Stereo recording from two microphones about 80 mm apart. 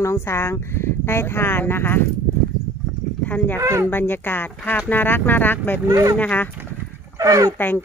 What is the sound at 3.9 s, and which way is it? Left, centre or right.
Speech, left.